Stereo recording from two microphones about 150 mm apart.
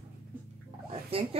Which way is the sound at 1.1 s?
40° right (ahead or behind).